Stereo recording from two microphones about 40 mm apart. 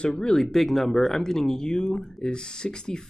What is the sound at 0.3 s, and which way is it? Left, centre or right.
Speech, centre.